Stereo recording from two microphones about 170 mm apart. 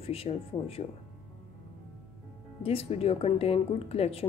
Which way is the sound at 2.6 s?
35° left (ahead or behind).